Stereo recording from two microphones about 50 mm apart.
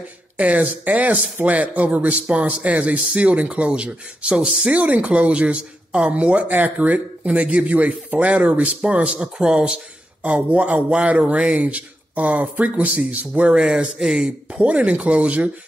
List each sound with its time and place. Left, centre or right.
0.4 s speech: right
10.2 s speech: right
13.5 s speech: centre
14.5 s speech: right